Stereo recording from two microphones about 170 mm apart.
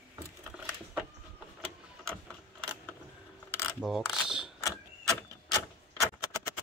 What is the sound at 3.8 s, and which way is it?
Mechanisms, centre (ahead or behind).